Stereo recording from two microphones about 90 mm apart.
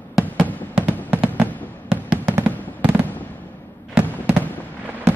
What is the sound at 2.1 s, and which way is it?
Fireworks, 25° right (ahead or behind).